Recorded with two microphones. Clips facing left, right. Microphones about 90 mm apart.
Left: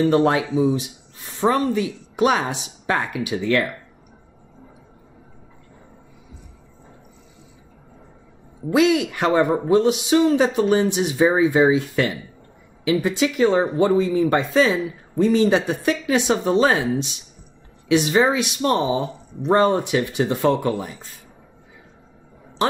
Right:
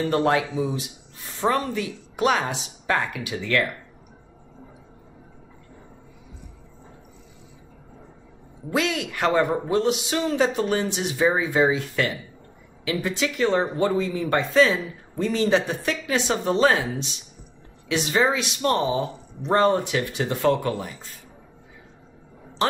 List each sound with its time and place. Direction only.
0.0 s speech: 20° left (ahead or behind)
8.7 s speech: 15° left (ahead or behind)
17.8 s speech: 20° left (ahead or behind)